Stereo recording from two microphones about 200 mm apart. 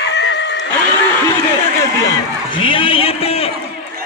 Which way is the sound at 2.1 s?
25° left (ahead or behind).